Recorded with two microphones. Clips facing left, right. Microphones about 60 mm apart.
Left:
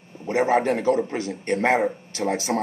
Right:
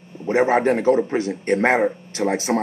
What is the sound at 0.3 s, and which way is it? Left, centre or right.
A man's voice, right.